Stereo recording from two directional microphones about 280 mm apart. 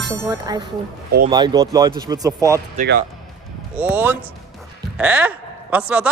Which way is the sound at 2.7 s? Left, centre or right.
Right.